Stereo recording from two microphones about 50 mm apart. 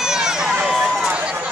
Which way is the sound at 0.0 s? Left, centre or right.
Centre.